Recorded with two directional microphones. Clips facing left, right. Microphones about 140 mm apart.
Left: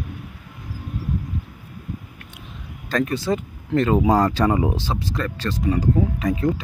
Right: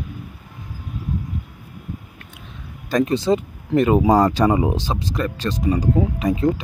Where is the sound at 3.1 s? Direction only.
20° right (ahead or behind).